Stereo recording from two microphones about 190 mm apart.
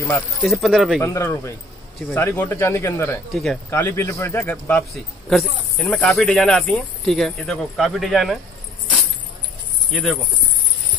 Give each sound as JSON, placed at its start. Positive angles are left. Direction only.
{"t": 0.4, "sound": "speech", "side_deg": 0}
{"t": 1.0, "sound": "speech", "side_deg": 15}
{"t": 9.8, "sound": "speech", "side_deg": 0}